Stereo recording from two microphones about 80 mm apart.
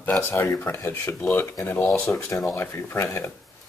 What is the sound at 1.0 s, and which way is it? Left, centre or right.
Speech, left.